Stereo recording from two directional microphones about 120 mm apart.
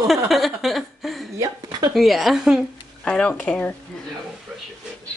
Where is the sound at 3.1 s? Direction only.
5° left (ahead or behind).